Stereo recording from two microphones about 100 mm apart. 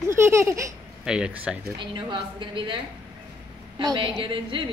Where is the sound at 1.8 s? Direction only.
55° right (ahead or behind).